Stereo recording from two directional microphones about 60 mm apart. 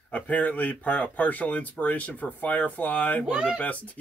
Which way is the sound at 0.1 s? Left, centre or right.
Left.